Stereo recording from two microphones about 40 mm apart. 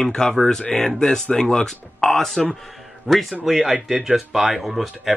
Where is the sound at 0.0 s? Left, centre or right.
Centre.